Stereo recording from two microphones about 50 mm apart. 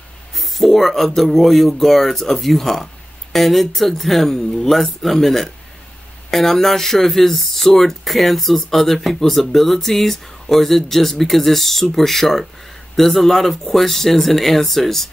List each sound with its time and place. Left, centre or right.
0.4 s speech: centre